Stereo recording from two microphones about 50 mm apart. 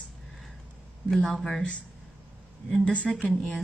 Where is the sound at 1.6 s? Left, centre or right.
Left.